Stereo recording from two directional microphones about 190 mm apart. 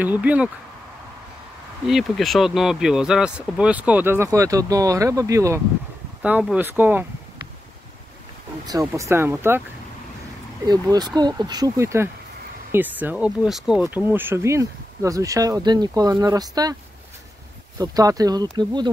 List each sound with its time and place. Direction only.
0.0 s speech: 10° right (ahead or behind)
1.9 s speech: centre (ahead or behind)
8.6 s speech: 15° right (ahead or behind)
10.7 s speech: 20° right (ahead or behind)
17.7 s speech: 20° right (ahead or behind)